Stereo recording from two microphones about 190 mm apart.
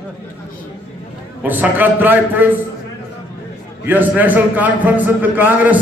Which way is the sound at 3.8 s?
10° right (ahead or behind).